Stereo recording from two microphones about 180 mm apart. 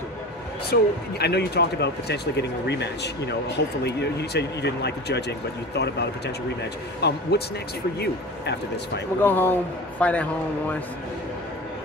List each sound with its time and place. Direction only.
0.7 s speech: 65° left (ahead or behind)
9.2 s speech: 10° left (ahead or behind)